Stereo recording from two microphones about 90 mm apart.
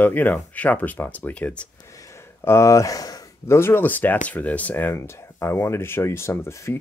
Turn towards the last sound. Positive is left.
turn(degrees=30)  # may be behind; listen again after turning